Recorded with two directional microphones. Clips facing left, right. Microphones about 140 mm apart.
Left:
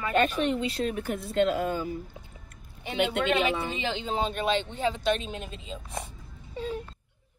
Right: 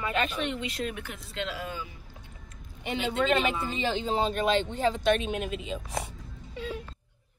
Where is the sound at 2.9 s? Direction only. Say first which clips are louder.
Even; 65° left (ahead or behind).